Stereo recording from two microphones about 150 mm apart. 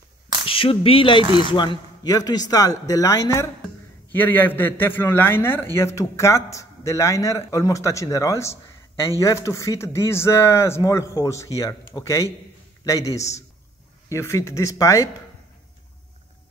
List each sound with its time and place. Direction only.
0.5 s speech: 40° left (ahead or behind)
1.2 s speech: 35° right (ahead or behind)
1.5 s a man's voice: 30° left (ahead or behind)